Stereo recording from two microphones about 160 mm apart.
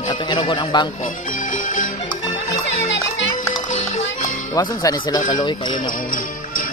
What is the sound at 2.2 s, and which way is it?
Music, 20° left (ahead or behind).